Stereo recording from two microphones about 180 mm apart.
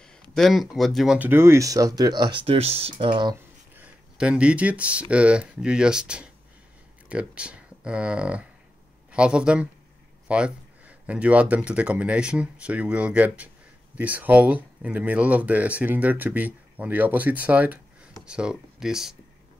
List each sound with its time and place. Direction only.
0.0 s speech: 5° left (ahead or behind); by 3.3 s 25° right (ahead or behind)
3.7 s speech: 10° right (ahead or behind)